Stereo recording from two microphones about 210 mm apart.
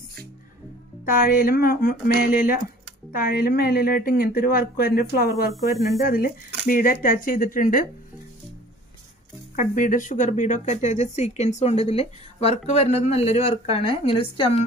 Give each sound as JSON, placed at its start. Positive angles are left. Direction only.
{"t": 1.0, "sound": "speech", "side_deg": 45}
{"t": 5.5, "sound": "speech", "side_deg": 0}
{"t": 6.0, "sound": "speech", "side_deg": 40}
{"t": 9.6, "sound": "speech", "side_deg": 40}